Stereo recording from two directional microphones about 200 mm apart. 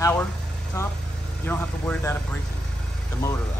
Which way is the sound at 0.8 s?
15° left (ahead or behind).